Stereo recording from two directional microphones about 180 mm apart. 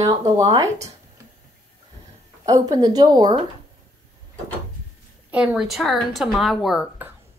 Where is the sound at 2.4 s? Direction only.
20° right (ahead or behind).